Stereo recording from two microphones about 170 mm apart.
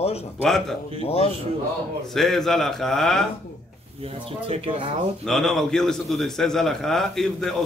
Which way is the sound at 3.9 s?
35° right (ahead or behind).